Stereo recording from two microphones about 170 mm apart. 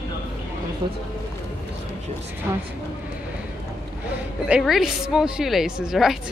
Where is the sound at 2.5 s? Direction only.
10° right (ahead or behind).